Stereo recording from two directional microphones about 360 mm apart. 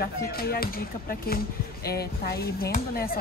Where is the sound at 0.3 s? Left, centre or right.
Left.